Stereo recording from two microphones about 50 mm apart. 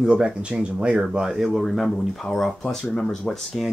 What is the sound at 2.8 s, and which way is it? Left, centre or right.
Speech, centre.